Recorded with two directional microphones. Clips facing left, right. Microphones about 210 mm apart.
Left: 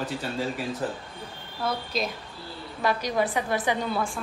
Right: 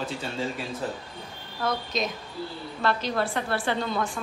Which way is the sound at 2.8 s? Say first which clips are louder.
Left 1 dB; 15° left (ahead or behind).